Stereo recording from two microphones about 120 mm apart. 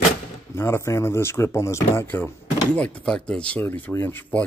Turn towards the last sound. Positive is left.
turn(degrees=15)  # may be behind; listen again after turning